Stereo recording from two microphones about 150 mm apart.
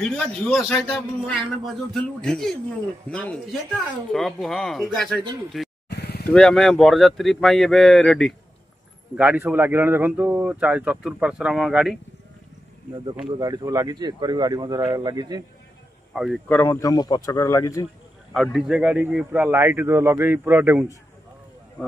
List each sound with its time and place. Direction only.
0.0 s speech: centre (ahead or behind)
5.5 s vehicle: centre (ahead or behind)
5.9 s a sound: 90° left
6.2 s speech: 5° left (ahead or behind)
9.1 s a man's voice: 10° right (ahead or behind)
13.2 s speech: 30° right (ahead or behind)
16.1 s speech: centre (ahead or behind)
16.4 s speech: 15° left (ahead or behind)
18.3 s a man's voice: centre (ahead or behind)